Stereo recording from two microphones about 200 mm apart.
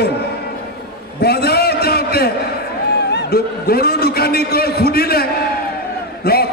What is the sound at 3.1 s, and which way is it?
A man's voice, 55° left (ahead or behind).